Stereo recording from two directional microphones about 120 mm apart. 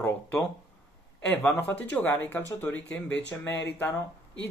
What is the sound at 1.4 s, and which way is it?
Speech, 15° left (ahead or behind).